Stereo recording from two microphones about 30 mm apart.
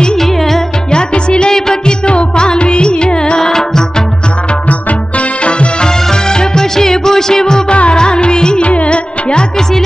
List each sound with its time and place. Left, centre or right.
0.2 s music: centre
0.9 s music: left
5.4 s music: left
5.9 s music: left
8.6 s music: left